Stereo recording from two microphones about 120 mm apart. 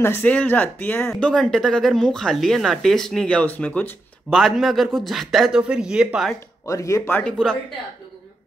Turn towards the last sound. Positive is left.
turn(degrees=5)  # may be behind; listen again after turning